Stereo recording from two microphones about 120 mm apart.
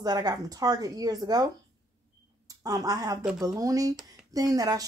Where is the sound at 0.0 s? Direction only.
35° right (ahead or behind).